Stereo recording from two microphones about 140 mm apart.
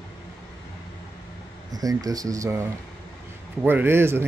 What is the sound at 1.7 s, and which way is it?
Speech, 25° right (ahead or behind).